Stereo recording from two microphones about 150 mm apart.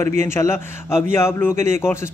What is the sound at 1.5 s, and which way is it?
Speech, 50° right (ahead or behind).